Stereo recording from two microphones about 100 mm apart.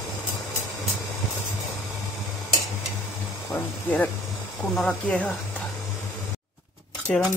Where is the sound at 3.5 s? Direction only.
15° left (ahead or behind).